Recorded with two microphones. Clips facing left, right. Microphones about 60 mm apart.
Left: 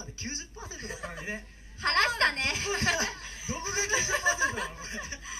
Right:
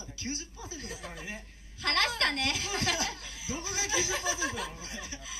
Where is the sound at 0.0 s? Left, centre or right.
Left.